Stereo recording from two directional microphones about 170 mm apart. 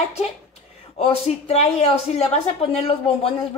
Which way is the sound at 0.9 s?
35° left (ahead or behind).